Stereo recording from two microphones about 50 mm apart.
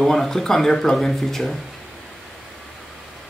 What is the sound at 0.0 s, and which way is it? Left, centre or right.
Speech, centre.